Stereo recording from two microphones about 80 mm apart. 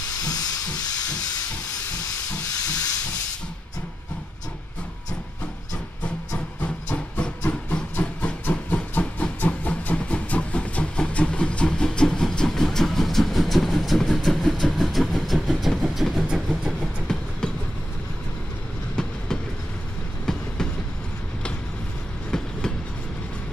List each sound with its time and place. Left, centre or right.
0.2 s hiss: left
2.4 s hiss: left
6.0 s train: centre
20.3 s train: centre
22.3 s train: centre